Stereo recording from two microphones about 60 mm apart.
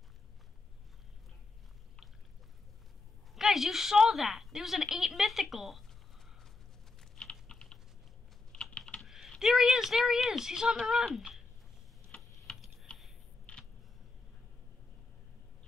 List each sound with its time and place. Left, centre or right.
3.3 s a woman's voice: centre
7.2 s typing: centre
9.0 s typing: centre
9.4 s a woman's voice: centre
13.5 s a sound: left